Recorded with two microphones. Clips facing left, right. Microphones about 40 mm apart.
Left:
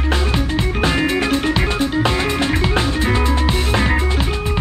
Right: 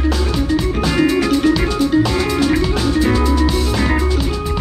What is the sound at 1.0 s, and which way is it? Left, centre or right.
Music, left.